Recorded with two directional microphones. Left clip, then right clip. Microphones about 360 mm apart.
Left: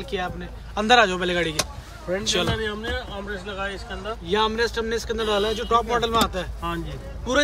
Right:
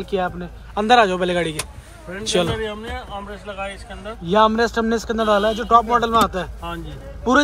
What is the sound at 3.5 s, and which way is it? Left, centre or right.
Speech, centre.